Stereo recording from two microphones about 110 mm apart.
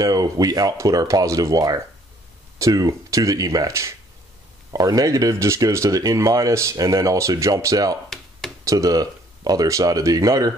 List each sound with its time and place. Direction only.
0.0 s speech: 35° right (ahead or behind)